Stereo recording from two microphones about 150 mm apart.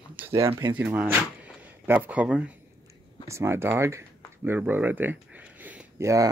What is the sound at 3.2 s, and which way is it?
Speech, 20° right (ahead or behind).